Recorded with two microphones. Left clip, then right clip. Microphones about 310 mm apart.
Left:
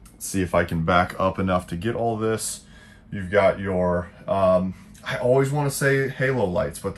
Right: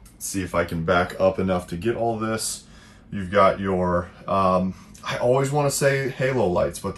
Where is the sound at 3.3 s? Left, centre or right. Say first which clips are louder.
Right 1 dB; centre.